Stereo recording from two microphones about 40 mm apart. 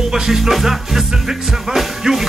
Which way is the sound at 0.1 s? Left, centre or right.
Centre.